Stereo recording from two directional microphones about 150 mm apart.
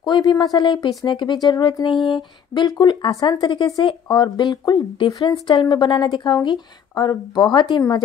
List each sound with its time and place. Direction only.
0.0 s speech: 30° left (ahead or behind)